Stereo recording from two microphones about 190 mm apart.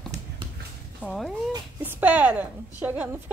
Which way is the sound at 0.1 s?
40° right (ahead or behind).